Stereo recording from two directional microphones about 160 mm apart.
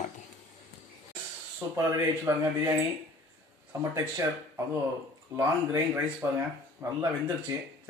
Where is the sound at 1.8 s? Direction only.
20° right (ahead or behind).